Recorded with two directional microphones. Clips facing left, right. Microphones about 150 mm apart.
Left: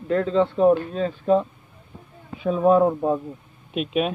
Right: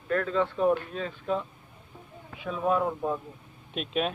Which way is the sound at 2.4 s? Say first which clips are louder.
Left 10 dB; 35° left (ahead or behind).